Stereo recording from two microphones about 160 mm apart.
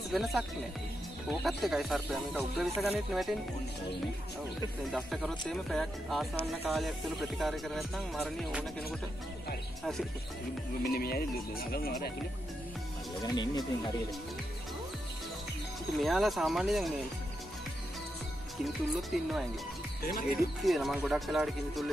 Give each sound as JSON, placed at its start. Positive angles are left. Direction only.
{"t": 0.1, "sound": "music", "side_deg": 0}
{"t": 4.9, "sound": "music", "side_deg": 0}
{"t": 10.8, "sound": "speech", "side_deg": 70}
{"t": 13.2, "sound": "speech", "side_deg": 25}
{"t": 16.0, "sound": "music", "side_deg": 0}
{"t": 18.6, "sound": "music", "side_deg": 0}
{"t": 20.0, "sound": "speech", "side_deg": 65}
{"t": 20.6, "sound": "music", "side_deg": 0}